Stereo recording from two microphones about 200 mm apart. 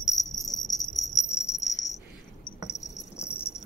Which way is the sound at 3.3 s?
30° left (ahead or behind).